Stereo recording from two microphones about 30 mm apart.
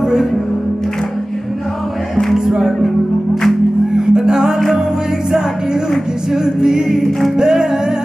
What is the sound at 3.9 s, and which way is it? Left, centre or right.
Music, right.